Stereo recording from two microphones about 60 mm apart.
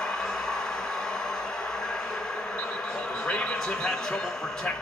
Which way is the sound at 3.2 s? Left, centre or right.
Centre.